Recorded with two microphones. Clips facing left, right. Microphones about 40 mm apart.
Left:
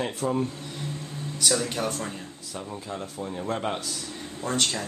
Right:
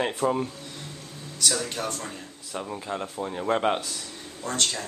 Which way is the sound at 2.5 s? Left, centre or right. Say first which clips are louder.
Right 4 dB; right.